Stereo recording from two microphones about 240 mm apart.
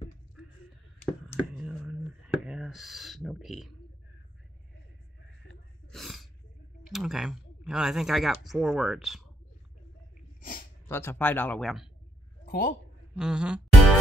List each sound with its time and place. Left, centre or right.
1.5 s a sound: centre
5.9 s sneeze: centre
6.9 s speech: centre
10.9 s speech: centre
12.4 s a sound: left
13.1 s music: centre